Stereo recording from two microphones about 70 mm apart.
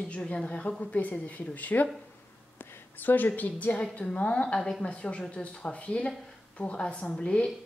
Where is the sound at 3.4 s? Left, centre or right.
Left.